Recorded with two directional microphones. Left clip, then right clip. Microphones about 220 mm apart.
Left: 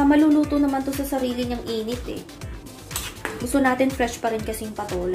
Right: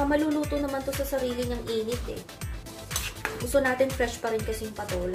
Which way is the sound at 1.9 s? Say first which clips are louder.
Left 3 dB; centre (ahead or behind).